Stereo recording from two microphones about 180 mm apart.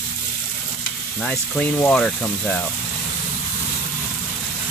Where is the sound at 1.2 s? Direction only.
5° left (ahead or behind).